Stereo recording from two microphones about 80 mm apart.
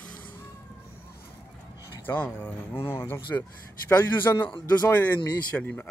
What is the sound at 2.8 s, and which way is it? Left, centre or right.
Speech, left.